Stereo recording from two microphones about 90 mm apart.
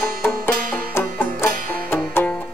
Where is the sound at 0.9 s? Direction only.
30° left (ahead or behind).